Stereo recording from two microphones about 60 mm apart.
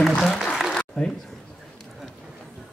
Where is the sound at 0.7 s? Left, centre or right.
Centre.